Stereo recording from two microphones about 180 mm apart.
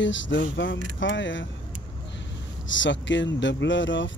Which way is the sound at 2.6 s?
90° left.